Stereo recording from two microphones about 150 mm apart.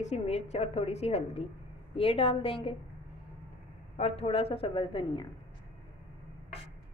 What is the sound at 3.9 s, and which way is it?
A woman's voice, 40° left (ahead or behind).